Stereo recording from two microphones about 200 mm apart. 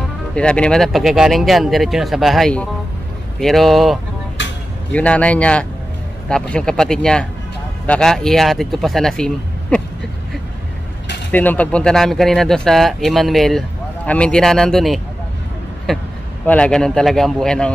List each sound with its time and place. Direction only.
0.3 s speech: 5° left (ahead or behind)
4.4 s a sound: 65° left (ahead or behind)
4.9 s speech: 5° left (ahead or behind)
11.3 s speech: 10° left (ahead or behind)
16.4 s speech: 5° left (ahead or behind)